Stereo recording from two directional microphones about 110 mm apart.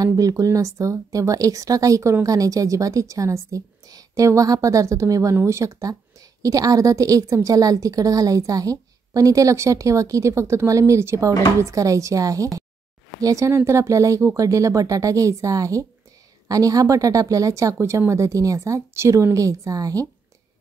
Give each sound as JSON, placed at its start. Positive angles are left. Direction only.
{"t": 0.0, "sound": "a woman's voice", "side_deg": -35}